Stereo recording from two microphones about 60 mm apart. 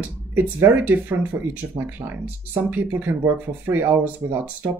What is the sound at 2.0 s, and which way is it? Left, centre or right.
Speech, right.